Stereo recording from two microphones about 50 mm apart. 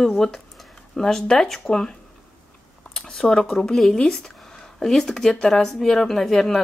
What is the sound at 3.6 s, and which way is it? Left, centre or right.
Speech, centre.